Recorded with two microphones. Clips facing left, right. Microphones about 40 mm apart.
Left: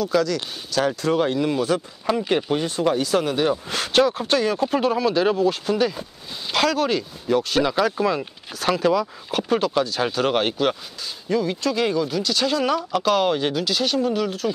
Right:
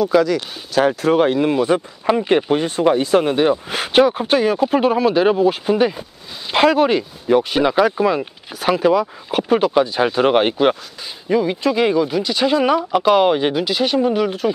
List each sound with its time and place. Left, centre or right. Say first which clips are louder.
0.0 s speech: right 6 dB; centre
0.8 s speech: right 6 dB; right